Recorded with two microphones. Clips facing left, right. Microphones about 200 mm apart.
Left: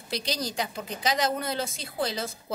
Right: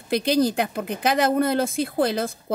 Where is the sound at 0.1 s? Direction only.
55° right (ahead or behind).